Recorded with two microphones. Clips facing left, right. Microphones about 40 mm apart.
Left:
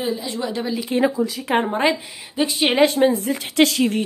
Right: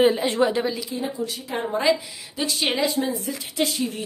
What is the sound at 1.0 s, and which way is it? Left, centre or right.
Speech, left.